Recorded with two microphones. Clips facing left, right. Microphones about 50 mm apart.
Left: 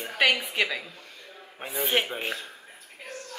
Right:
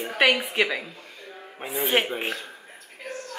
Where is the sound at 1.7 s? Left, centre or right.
Right.